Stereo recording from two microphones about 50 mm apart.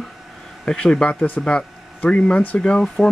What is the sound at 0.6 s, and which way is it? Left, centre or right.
Speech, centre.